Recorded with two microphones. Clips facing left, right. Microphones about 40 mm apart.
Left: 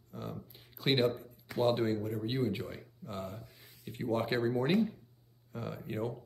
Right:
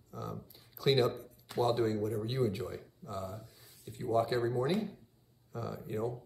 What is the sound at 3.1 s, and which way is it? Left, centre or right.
Speech, left.